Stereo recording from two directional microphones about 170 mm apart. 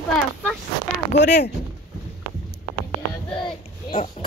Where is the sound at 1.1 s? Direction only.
80° left.